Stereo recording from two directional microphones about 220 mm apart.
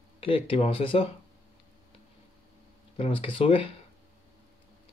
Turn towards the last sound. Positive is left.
turn(degrees=25)  # may be behind; listen again after turning